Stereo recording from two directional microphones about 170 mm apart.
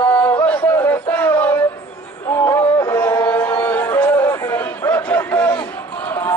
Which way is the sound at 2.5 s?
20° left (ahead or behind).